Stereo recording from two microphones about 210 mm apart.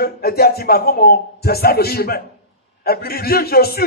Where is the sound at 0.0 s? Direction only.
45° left (ahead or behind).